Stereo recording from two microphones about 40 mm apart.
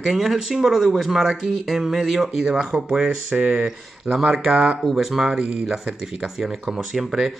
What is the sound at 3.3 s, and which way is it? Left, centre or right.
Speech, right.